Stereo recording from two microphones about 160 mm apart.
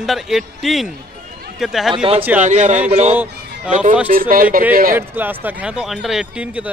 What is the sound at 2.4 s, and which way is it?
Speech, 50° right (ahead or behind).